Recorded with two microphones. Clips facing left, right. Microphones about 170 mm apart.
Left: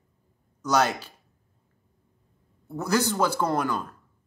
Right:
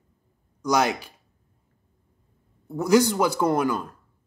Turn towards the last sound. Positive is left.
turn(degrees=-10)  # may be behind; listen again after turning